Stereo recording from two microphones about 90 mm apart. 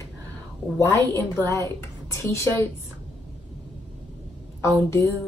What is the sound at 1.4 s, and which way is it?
A woman's voice, 30° left (ahead or behind).